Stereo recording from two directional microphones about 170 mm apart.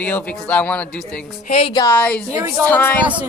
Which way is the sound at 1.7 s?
20° left (ahead or behind).